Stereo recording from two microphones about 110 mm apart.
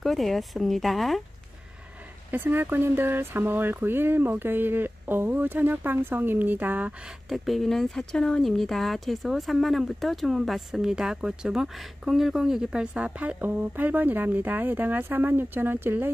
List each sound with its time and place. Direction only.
0.0 s speech: centre (ahead or behind)
2.3 s speech: 15° right (ahead or behind)
7.2 s speech: centre (ahead or behind); by 16.1 s 20° right (ahead or behind)